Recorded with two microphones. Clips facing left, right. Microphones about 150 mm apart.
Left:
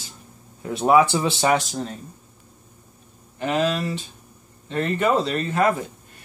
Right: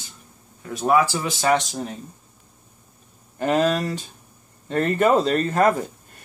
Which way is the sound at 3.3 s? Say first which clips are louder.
Right 2 dB; 45° right (ahead or behind).